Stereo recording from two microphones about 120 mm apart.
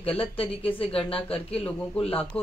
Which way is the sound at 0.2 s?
50° left (ahead or behind).